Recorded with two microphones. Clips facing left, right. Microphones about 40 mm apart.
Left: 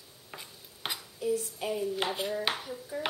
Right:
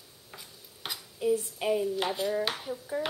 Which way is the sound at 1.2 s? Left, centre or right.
Right.